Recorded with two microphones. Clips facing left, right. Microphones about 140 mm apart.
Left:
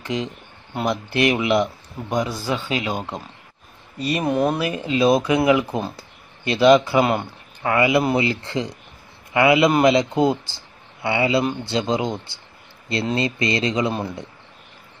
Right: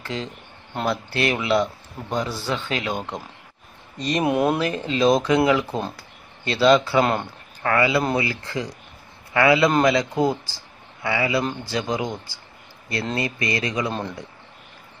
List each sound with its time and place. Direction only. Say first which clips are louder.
0.0 s speech: left 4 dB; 15° left (ahead or behind)
4.2 s speech: right 1 dB; 5° right (ahead or behind)
4.6 s speech: left 1 dB; 10° left (ahead or behind)